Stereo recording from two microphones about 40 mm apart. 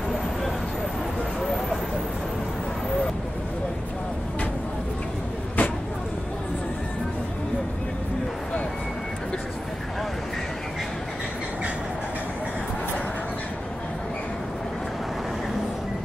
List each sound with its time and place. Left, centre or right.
5.6 s vehicle: left